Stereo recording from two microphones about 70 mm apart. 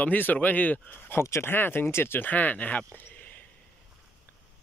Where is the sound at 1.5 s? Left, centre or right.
Left.